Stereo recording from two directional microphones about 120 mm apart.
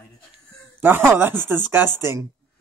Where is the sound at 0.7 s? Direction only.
15° right (ahead or behind).